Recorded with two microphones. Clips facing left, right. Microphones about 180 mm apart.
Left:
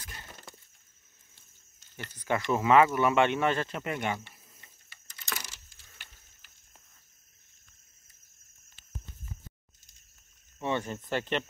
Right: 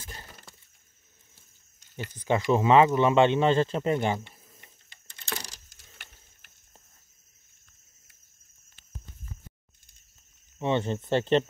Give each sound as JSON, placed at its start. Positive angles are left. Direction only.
{"t": 0.0, "sound": "breaking", "side_deg": -30}
{"t": 1.8, "sound": "speech", "side_deg": -20}
{"t": 5.1, "sound": "computer keyboard", "side_deg": -30}
{"t": 10.6, "sound": "speech", "side_deg": -25}